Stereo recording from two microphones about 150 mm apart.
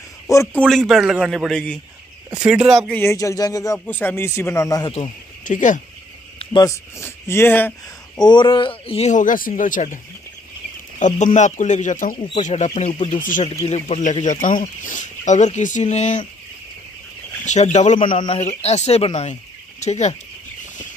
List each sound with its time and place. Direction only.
0.6 s a man's voice: centre (ahead or behind)
2.9 s a man's voice: 15° left (ahead or behind)
5.4 s speech: 55° left (ahead or behind)
6.5 s speech: 20° left (ahead or behind)
8.2 s speech: 30° left (ahead or behind); by 9.9 s 60° left (ahead or behind)
11.0 s speech: 55° left (ahead or behind)
17.5 s speech: 50° left (ahead or behind)
18.0 s speech: 35° left (ahead or behind)